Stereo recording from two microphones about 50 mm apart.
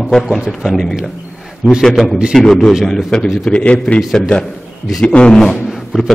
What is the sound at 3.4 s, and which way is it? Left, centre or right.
A man's voice, left.